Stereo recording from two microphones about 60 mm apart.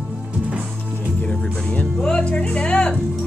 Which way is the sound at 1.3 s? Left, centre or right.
Centre.